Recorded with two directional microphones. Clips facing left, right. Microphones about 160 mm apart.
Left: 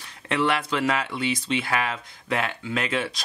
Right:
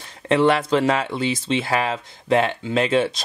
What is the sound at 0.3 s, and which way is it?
Speech, 30° right (ahead or behind).